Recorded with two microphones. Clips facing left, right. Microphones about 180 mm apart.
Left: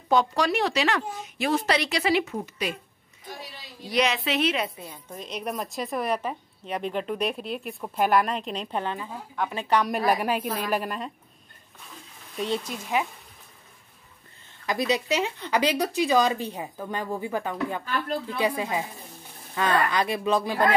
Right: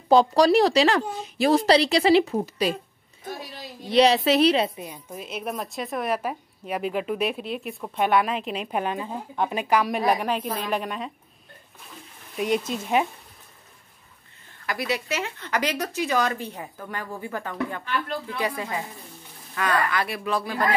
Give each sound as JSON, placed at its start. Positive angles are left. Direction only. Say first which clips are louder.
{"t": 0.1, "sound": "speech", "louder": "right 6 dB", "side_deg": -35}
{"t": 3.8, "sound": "speech", "louder": "right 7 dB", "side_deg": -30}
{"t": 4.7, "sound": "a woman's voice", "louder": "right 3 dB", "side_deg": -15}
{"t": 9.7, "sound": "a woman's voice", "louder": "even", "side_deg": -5}
{"t": 12.4, "sound": "speech", "louder": "right 4 dB", "side_deg": -15}
{"t": 14.7, "sound": "speech", "louder": "left 3 dB", "side_deg": 20}
{"t": 17.8, "sound": "speech", "louder": "right 1 dB", "side_deg": 40}
{"t": 18.4, "sound": "speech", "louder": "left 3 dB", "side_deg": 15}